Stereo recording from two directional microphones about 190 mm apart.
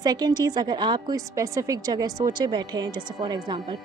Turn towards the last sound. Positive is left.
turn(degrees=-20)  # may be behind; listen again after turning